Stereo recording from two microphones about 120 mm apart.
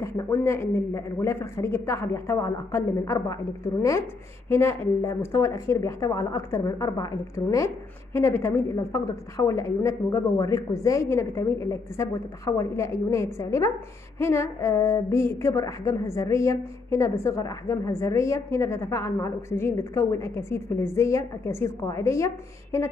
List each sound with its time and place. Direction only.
0.0 s a woman's voice: 25° left (ahead or behind)